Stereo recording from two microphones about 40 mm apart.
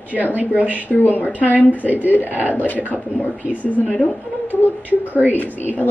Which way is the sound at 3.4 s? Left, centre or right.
Right.